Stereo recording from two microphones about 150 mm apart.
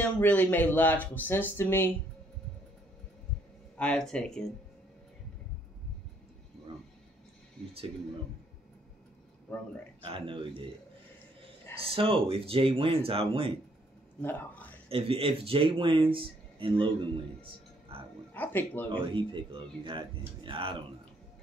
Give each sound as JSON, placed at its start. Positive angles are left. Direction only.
{"t": 0.0, "sound": "speech", "side_deg": 10}
{"t": 3.7, "sound": "speech", "side_deg": 5}
{"t": 9.5, "sound": "speech", "side_deg": 5}
{"t": 10.0, "sound": "speech", "side_deg": -35}
{"t": 11.9, "sound": "speech", "side_deg": -40}
{"t": 14.2, "sound": "speech", "side_deg": 10}
{"t": 14.9, "sound": "speech", "side_deg": -40}
{"t": 17.4, "sound": "music", "side_deg": -35}
{"t": 18.3, "sound": "speech", "side_deg": 10}
{"t": 18.9, "sound": "speech", "side_deg": -35}